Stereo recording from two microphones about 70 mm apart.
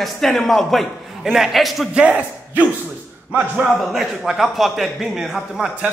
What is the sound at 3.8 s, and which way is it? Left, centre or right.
Speech, centre.